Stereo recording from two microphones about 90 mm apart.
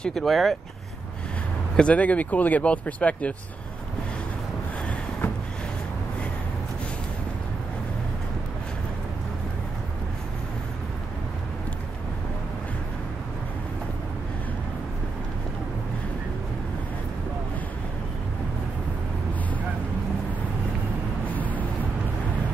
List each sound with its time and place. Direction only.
0.0 s speech: 5° left (ahead or behind)
1.8 s speech: 15° left (ahead or behind)
21.3 s a sound: 20° left (ahead or behind)